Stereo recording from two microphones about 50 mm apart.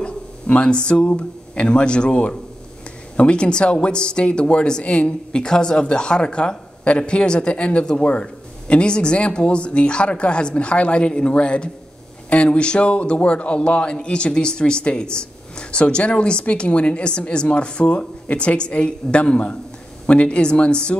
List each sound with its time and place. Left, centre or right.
0.0 s speech: left